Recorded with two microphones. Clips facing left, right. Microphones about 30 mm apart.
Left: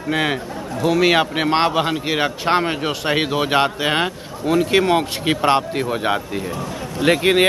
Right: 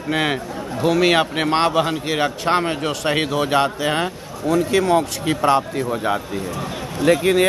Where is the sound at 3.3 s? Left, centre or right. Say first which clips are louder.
Left 1 dB; left.